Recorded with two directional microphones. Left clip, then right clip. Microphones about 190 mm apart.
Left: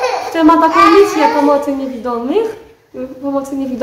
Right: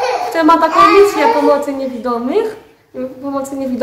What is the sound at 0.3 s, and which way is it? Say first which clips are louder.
A child's voice: left 1 dB; 5° right (ahead or behind).